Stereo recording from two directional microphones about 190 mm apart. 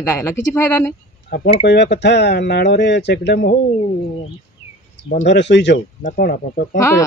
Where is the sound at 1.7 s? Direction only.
65° left (ahead or behind).